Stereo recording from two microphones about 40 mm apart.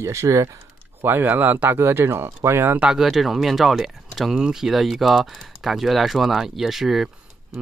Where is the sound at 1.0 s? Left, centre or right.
Right.